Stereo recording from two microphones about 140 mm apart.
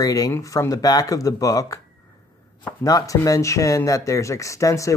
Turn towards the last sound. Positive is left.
turn(degrees=20)  # may be behind; listen again after turning